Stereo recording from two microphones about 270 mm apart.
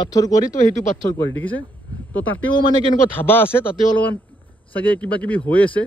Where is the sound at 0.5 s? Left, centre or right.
Left.